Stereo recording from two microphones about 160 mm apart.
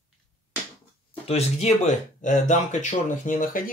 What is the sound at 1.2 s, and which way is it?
Speech, 45° left (ahead or behind).